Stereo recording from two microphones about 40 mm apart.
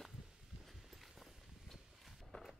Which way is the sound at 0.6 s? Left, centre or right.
Centre.